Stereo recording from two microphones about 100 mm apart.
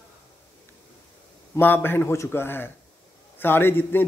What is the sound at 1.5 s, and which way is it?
Speech, 20° left (ahead or behind).